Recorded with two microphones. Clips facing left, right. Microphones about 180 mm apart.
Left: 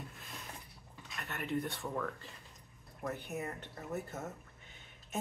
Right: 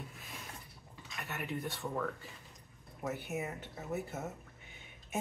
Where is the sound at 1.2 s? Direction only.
5° right (ahead or behind).